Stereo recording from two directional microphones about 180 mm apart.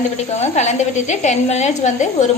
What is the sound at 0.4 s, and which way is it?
A woman's voice, 40° left (ahead or behind).